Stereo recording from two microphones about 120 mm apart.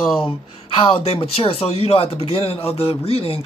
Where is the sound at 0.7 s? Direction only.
50° left (ahead or behind).